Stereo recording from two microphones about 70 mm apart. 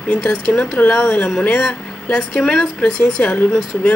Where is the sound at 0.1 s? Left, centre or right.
Centre.